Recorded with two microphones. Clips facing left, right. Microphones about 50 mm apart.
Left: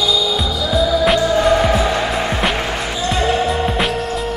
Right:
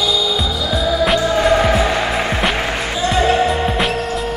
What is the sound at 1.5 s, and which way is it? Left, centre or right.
Music, centre.